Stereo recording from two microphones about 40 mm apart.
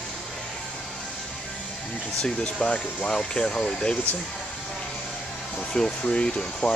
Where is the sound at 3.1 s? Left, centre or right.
Centre.